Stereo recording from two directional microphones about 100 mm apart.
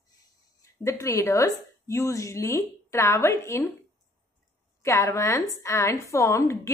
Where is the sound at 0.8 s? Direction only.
30° left (ahead or behind).